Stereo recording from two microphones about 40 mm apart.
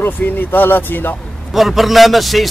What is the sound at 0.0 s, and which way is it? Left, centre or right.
Speech, left.